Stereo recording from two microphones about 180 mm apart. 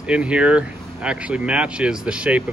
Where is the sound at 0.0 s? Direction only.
5° right (ahead or behind).